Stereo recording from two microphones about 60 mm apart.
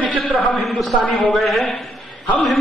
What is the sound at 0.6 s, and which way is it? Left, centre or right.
Speech, centre.